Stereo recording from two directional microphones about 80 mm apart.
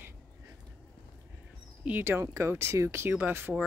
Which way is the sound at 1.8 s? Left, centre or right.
Centre.